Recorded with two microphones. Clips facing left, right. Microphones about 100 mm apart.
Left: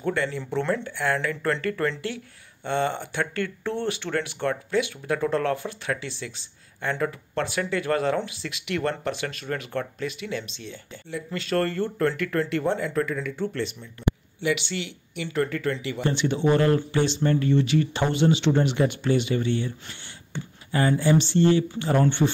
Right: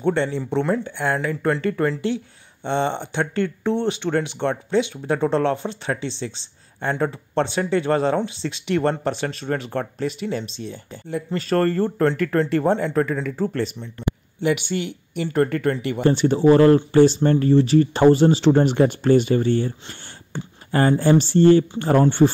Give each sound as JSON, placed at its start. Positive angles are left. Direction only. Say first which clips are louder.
{"t": 0.0, "sound": "speech", "louder": "right 5 dB", "side_deg": -25}
{"t": 0.4, "sound": "speech", "louder": "right 4 dB", "side_deg": -15}